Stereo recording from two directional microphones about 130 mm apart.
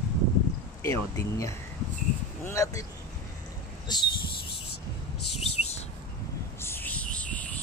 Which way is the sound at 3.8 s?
35° left (ahead or behind).